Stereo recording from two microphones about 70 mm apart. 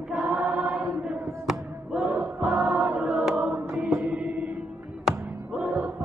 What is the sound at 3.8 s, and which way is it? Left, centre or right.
Music, right.